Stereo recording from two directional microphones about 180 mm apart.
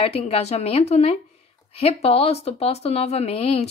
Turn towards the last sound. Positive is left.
turn(degrees=35)  # may be behind; listen again after turning